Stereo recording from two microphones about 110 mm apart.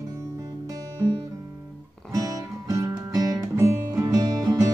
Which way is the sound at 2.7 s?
30° right (ahead or behind).